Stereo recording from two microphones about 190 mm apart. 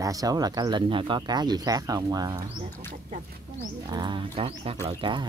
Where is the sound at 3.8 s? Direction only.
25° right (ahead or behind).